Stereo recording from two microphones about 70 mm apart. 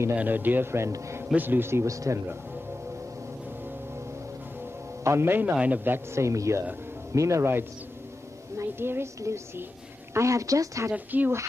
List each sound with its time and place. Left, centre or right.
0.1 s a man's voice: right
1.3 s speech: right
5.0 s speech: right
5.5 s a man's voice: centre
6.1 s speech: right
10.1 s speech: right
11.1 s a man's voice: right